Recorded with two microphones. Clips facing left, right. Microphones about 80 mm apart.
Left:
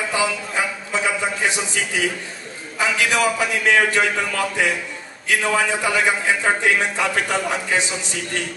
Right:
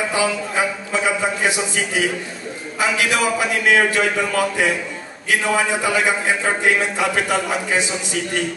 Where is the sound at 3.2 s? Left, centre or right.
Centre.